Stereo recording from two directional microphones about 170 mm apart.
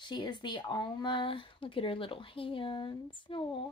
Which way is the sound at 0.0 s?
25° left (ahead or behind).